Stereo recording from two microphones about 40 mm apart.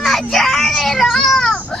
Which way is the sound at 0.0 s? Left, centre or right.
Centre.